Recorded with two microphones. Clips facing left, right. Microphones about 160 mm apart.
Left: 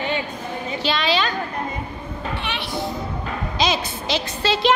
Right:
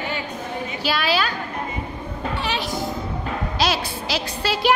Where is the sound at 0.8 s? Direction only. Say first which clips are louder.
Left 1 dB; 10° right (ahead or behind).